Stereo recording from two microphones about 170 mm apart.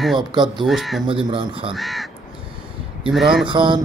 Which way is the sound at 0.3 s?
25° right (ahead or behind).